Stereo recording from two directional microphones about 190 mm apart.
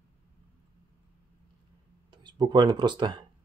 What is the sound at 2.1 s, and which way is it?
Speech, 20° right (ahead or behind).